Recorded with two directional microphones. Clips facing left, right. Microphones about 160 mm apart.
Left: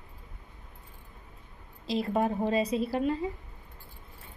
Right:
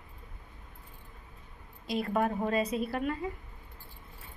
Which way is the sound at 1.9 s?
30° left (ahead or behind).